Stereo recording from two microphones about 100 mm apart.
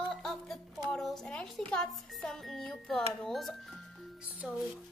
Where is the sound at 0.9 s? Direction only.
5° left (ahead or behind).